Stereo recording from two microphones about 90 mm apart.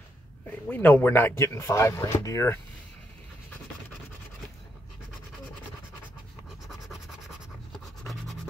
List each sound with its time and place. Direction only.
0.7 s speech: 20° left (ahead or behind)
8.0 s scratch: centre (ahead or behind)